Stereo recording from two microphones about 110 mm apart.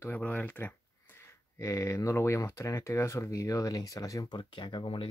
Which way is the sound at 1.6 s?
25° left (ahead or behind).